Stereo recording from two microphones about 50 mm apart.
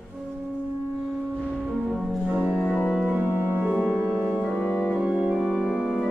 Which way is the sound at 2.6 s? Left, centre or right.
Centre.